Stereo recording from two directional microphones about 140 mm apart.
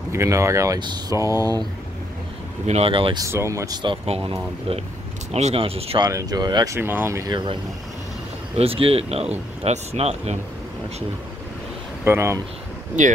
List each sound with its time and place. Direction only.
0.1 s speech: 20° right (ahead or behind)
2.6 s speech: 45° right (ahead or behind)
3.3 s speech: 20° right (ahead or behind); by 5.9 s 45° right (ahead or behind)
5.9 s speech: 25° right (ahead or behind)
8.5 s speech: 40° right (ahead or behind)
12.0 s speech: 20° right (ahead or behind)